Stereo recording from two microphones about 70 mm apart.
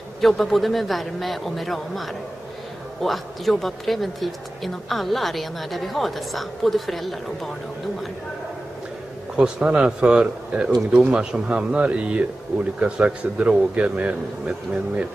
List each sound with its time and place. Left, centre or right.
0.2 s speech: centre
9.4 s a man's voice: centre